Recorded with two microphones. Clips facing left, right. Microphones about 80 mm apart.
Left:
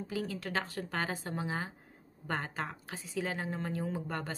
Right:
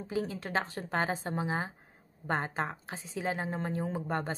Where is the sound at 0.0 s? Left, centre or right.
Right.